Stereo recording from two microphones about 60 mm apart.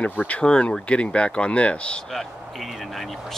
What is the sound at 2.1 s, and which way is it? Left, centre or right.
Speech, centre.